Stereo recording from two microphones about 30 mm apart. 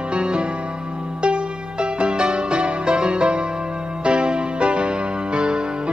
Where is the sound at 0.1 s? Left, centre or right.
Right.